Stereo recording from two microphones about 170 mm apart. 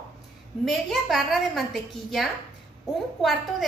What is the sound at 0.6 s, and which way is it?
A woman's voice, centre (ahead or behind).